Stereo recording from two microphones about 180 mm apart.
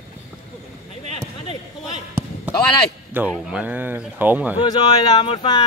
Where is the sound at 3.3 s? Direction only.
5° right (ahead or behind).